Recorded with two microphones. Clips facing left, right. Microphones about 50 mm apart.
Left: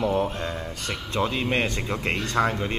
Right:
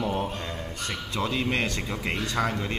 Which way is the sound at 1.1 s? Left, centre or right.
Left.